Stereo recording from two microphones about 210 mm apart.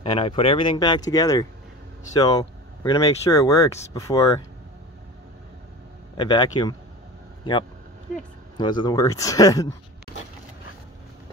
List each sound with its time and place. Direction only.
0.0 s speech: 25° left (ahead or behind)
6.1 s speech: 20° left (ahead or behind)
8.5 s speech: 20° left (ahead or behind)